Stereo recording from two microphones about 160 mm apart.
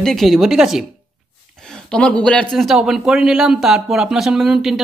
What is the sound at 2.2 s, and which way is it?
Speech, 5° left (ahead or behind).